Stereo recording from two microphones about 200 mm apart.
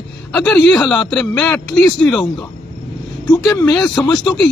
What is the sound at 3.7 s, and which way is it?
Speech, 5° left (ahead or behind).